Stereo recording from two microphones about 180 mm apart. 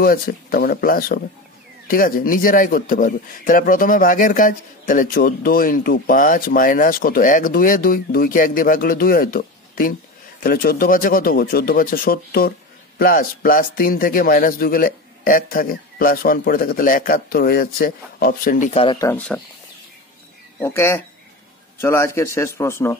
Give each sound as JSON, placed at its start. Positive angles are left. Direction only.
{"t": 0.0, "sound": "speech", "side_deg": 55}
{"t": 18.9, "sound": "a man's voice", "side_deg": 15}
{"t": 20.6, "sound": "a man's voice", "side_deg": 15}